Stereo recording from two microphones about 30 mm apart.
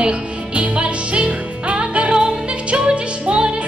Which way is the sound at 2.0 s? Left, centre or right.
Right.